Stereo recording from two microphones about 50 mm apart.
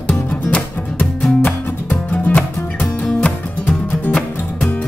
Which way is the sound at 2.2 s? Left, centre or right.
Left.